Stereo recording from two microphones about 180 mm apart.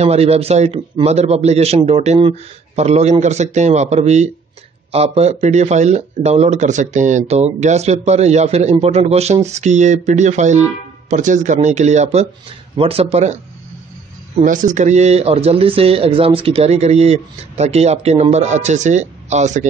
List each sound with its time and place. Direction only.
0.0 s speech: 35° right (ahead or behind)
14.4 s speech: 45° right (ahead or behind)